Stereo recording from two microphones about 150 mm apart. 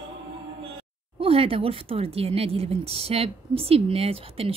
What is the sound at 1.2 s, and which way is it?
Speech, 40° right (ahead or behind).